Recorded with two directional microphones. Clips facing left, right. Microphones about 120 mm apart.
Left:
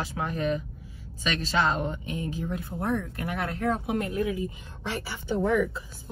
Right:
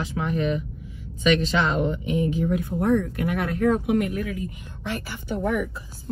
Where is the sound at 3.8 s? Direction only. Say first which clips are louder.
Right 4 dB; 25° left (ahead or behind).